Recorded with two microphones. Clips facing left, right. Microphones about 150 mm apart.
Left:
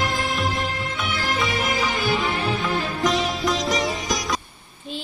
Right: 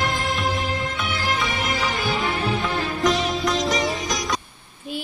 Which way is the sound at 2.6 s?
Centre (ahead or behind).